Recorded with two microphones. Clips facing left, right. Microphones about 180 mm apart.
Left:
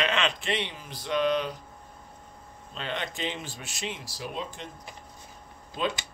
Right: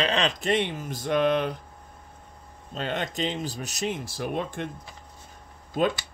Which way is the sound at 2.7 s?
45° right (ahead or behind).